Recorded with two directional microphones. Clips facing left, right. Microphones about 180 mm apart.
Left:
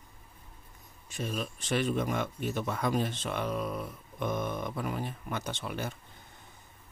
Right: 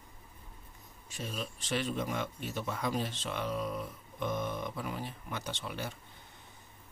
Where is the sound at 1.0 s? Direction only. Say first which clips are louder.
Left 5 dB; 55° left (ahead or behind).